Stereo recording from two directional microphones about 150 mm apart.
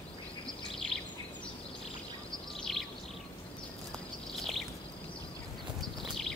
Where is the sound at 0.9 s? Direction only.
40° left (ahead or behind).